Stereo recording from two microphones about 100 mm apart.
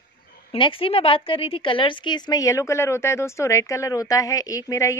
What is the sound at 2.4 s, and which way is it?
A woman's voice, 30° left (ahead or behind).